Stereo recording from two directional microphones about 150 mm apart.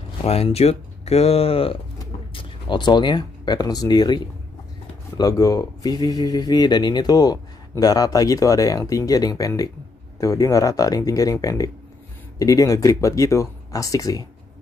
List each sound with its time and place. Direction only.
0.2 s speech: 40° left (ahead or behind); by 14.2 s 20° left (ahead or behind)